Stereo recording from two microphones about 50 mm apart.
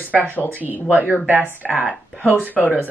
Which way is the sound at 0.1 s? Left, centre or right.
Left.